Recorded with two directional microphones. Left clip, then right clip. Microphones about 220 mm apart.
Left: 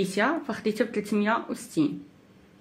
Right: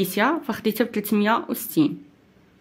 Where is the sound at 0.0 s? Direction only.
50° right (ahead or behind).